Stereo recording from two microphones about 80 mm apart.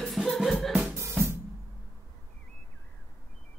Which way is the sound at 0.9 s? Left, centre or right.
Right.